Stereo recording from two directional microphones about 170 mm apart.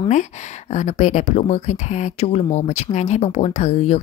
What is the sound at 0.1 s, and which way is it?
Speech, 45° left (ahead or behind).